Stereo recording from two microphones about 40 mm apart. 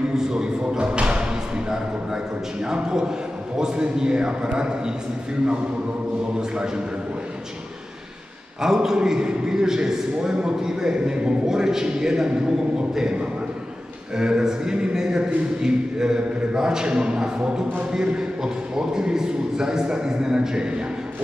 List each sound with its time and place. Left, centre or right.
0.1 s speech: centre
2.6 s a man's voice: centre
8.5 s a man's voice: centre